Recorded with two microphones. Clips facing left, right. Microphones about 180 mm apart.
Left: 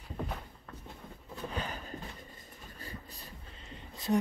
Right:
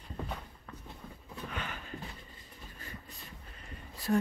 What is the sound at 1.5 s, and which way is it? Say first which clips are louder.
Horse: left 2 dB; 35° left (ahead or behind).